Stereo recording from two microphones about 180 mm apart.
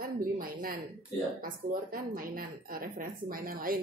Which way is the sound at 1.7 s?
55° right (ahead or behind).